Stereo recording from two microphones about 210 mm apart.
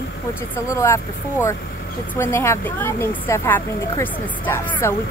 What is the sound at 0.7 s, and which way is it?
Speech, 15° left (ahead or behind).